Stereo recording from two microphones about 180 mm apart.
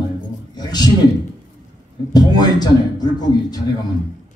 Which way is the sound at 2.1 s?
20° left (ahead or behind).